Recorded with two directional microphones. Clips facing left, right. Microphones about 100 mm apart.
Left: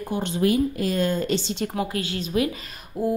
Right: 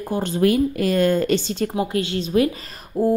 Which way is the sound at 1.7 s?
25° right (ahead or behind).